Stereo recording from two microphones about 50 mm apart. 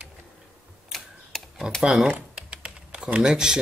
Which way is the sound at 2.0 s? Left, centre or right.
Right.